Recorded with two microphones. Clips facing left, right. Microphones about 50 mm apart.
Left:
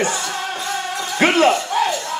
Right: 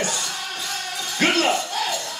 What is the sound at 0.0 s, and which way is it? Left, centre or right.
Music, left.